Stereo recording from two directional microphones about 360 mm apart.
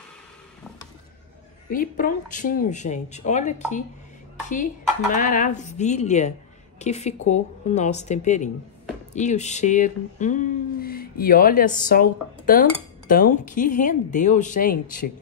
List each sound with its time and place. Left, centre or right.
1.7 s speech: left
5.1 s speech: left